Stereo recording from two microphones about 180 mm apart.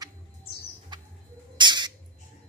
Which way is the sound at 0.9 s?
25° right (ahead or behind).